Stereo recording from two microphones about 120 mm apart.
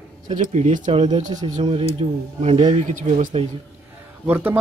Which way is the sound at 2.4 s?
70° right (ahead or behind).